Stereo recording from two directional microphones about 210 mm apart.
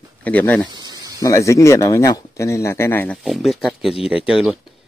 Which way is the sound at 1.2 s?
15° left (ahead or behind).